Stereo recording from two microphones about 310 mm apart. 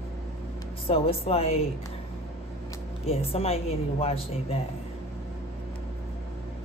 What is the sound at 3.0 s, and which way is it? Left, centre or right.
Speech, centre.